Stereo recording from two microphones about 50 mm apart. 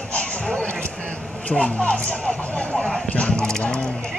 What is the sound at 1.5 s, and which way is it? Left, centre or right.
Speech, left.